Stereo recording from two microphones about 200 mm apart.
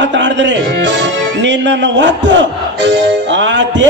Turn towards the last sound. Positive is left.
turn(degrees=-65)  # may be behind; listen again after turning